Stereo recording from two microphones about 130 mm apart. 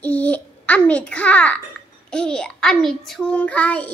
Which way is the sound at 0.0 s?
10° left (ahead or behind).